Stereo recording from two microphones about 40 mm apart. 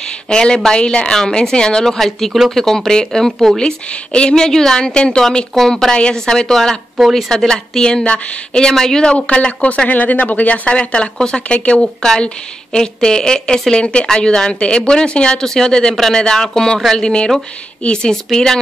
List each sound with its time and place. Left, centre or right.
0.3 s speech: centre
1.9 s a woman's voice: centre
3.5 s speech: left
4.4 s a woman's voice: centre
12.0 s a woman's voice: centre
16.9 s a woman's voice: left